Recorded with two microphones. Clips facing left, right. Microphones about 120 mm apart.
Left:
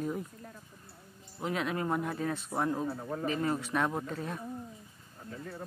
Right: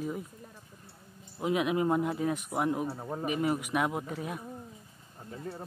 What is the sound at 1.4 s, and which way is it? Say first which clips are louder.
Speech: right 5 dB; 15° right (ahead or behind).